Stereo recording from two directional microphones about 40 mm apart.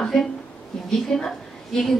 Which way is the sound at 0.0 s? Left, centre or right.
Centre.